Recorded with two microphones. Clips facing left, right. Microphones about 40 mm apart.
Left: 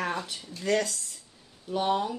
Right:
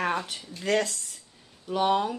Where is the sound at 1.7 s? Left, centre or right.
Right.